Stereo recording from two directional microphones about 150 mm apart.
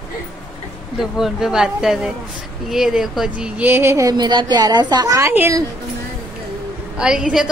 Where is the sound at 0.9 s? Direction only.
Centre (ahead or behind).